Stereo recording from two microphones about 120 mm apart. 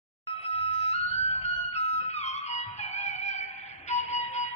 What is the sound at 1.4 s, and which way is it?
Music, 60° left (ahead or behind).